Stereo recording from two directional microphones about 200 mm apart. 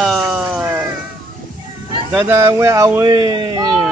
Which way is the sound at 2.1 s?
10° right (ahead or behind).